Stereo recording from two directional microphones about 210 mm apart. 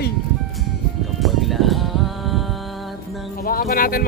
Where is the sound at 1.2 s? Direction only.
Centre (ahead or behind).